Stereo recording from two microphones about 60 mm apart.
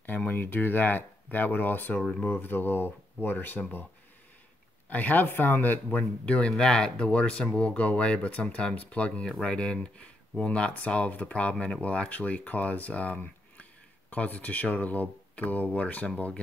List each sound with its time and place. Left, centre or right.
0.0 s speech: left
4.8 s speech: left